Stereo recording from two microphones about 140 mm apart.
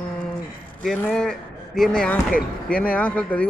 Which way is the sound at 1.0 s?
5° left (ahead or behind).